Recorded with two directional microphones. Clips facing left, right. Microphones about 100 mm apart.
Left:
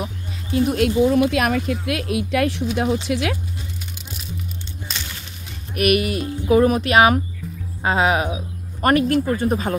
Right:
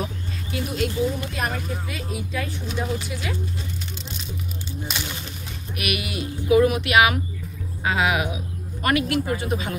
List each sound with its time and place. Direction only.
0.7 s speech: 65° left (ahead or behind); by 2.9 s 80° left
3.1 s speech: 90° left
5.8 s speech: 40° left (ahead or behind)